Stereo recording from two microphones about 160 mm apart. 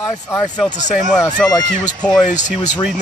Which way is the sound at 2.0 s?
5° left (ahead or behind).